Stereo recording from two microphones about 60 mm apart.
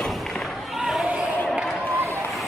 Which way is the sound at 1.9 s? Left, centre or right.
Right.